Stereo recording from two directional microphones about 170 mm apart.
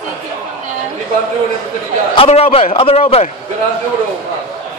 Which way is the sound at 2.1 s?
35° left (ahead or behind).